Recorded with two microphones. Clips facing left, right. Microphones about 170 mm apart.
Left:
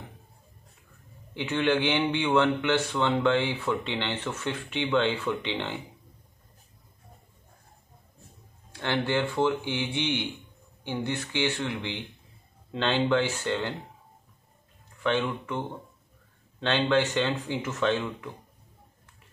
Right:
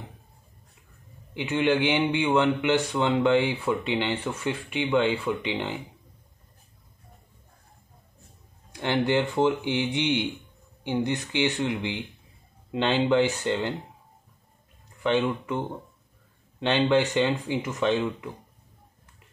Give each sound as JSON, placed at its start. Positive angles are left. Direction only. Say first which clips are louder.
{"t": 1.3, "sound": "a man's voice", "louder": "right 2 dB", "side_deg": -15}
{"t": 8.7, "sound": "a man's voice", "louder": "right 3 dB", "side_deg": -15}
{"t": 15.0, "sound": "a man's voice", "louder": "right 3 dB", "side_deg": -15}